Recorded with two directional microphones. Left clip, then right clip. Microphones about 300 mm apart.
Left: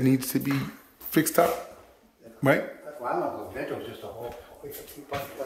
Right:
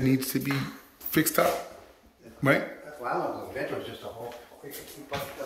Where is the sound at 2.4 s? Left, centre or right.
Centre.